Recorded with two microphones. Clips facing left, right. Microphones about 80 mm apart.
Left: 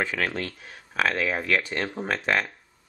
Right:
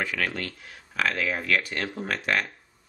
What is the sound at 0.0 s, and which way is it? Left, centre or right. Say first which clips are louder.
Speech: left 2 dB; left.